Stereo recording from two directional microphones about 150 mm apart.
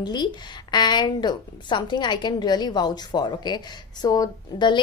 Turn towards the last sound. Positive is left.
turn(degrees=25)  # may be behind; listen again after turning